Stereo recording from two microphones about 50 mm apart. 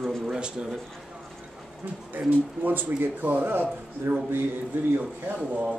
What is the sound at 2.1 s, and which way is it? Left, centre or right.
A man's voice, right.